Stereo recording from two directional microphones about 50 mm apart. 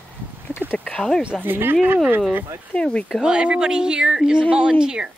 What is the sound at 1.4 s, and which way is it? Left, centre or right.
Speech, right.